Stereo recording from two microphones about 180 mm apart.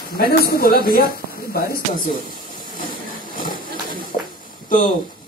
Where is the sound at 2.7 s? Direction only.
50° left (ahead or behind).